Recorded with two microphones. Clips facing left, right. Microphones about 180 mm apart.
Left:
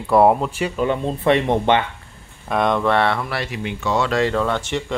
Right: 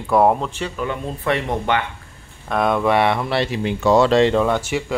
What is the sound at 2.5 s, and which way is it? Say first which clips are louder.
Speech: right 1 dB; 5° right (ahead or behind).